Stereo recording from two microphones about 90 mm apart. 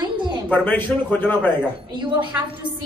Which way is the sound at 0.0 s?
55° right (ahead or behind).